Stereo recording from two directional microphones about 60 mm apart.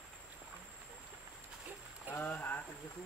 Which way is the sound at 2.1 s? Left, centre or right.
Left.